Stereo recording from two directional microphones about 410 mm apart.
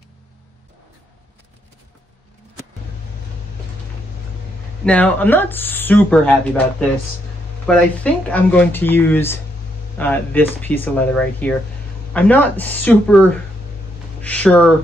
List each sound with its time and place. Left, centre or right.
4.8 s speech: centre
7.6 s speech: centre
14.2 s speech: centre